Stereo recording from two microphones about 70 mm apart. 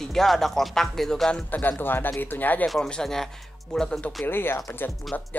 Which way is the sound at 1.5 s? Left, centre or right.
Left.